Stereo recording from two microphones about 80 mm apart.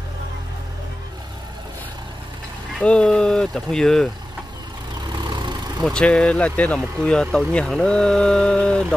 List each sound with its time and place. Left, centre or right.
2.8 s speech: centre
5.1 s vehicle: right
5.9 s speech: centre